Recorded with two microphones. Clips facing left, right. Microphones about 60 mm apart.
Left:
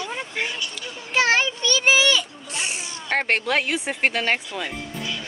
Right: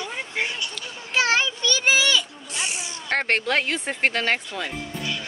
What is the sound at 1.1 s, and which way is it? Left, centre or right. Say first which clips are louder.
A child's voice: left 2 dB; left.